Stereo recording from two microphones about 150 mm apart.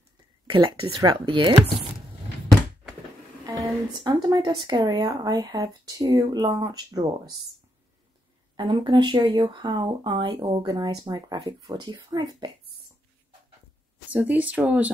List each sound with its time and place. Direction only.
0.5 s speech: 30° right (ahead or behind)
3.4 s speech: 25° right (ahead or behind)
8.5 s speech: 30° right (ahead or behind)
14.1 s speech: 10° right (ahead or behind)